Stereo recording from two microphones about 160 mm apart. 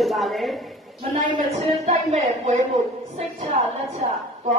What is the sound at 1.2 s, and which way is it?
A woman's voice, 45° right (ahead or behind).